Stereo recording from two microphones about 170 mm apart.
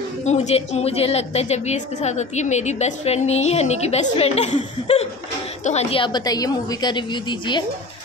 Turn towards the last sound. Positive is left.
turn(degrees=25)  # may be behind; listen again after turning